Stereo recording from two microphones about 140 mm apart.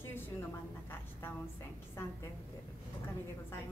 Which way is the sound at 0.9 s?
15° left (ahead or behind).